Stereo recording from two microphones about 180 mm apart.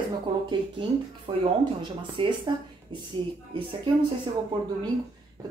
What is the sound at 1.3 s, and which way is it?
A woman's voice, 30° right (ahead or behind).